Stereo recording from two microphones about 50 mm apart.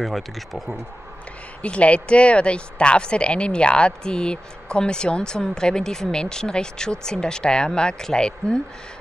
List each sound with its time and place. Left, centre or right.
0.0 s speech: centre
1.6 s speech: left